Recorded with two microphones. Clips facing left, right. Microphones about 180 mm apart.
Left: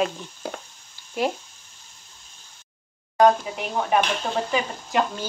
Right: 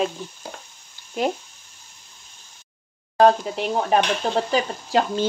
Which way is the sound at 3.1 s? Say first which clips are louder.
Right 2 dB; 30° right (ahead or behind).